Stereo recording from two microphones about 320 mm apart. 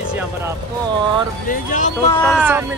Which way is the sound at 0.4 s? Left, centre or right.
Centre.